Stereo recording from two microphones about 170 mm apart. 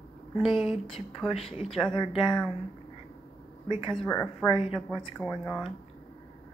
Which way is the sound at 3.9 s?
5° left (ahead or behind).